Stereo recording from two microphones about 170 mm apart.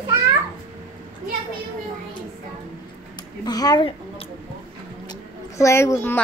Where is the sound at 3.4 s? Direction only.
25° left (ahead or behind).